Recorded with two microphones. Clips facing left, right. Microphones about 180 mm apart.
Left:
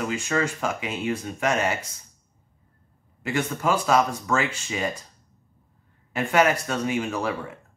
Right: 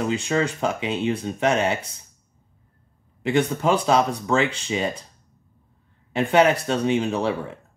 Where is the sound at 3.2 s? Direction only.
30° right (ahead or behind).